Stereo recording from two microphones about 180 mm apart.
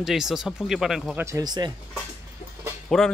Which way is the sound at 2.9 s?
Centre (ahead or behind).